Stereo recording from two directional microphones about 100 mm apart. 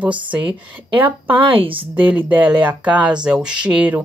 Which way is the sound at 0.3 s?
15° right (ahead or behind).